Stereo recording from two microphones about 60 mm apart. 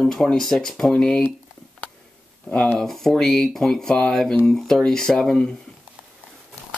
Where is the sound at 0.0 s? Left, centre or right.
Centre.